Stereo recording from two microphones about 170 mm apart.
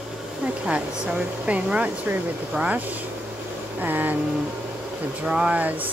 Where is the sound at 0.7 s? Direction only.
5° right (ahead or behind).